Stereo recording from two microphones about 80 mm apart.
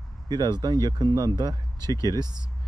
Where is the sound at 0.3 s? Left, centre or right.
Right.